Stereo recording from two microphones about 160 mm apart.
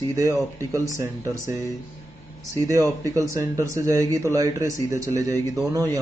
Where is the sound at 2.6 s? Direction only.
20° right (ahead or behind).